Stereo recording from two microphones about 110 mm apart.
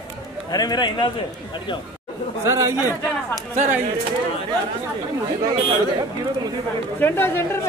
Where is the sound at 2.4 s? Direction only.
25° right (ahead or behind).